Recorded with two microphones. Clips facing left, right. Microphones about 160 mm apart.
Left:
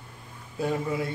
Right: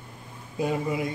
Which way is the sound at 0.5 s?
15° right (ahead or behind).